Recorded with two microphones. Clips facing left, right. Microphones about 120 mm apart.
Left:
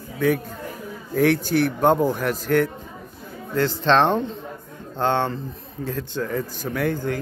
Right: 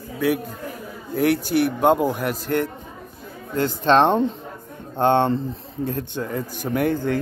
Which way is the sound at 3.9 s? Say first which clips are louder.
Right 3 dB; 20° right (ahead or behind).